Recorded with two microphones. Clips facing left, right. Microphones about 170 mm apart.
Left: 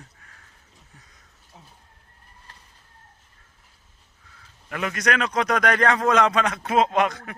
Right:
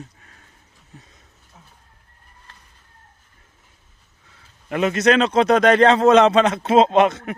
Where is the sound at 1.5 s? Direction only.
30° left (ahead or behind).